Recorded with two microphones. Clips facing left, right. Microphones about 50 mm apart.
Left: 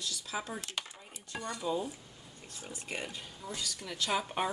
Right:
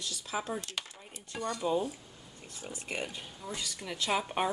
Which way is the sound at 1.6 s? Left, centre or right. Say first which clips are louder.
Right 3 dB; right.